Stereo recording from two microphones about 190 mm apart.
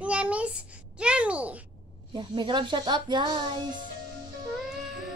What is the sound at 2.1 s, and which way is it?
Speech, 25° right (ahead or behind).